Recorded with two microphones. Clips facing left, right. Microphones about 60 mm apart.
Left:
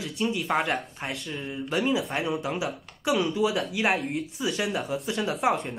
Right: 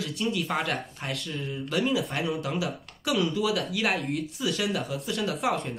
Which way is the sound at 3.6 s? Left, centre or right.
Centre.